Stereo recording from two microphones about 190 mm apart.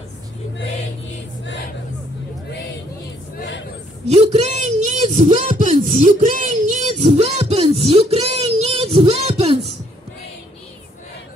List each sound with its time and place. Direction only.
3.3 s a sound: 65° left (ahead or behind)
4.1 s speech: 35° right (ahead or behind)
8.4 s child singing: 30° right (ahead or behind)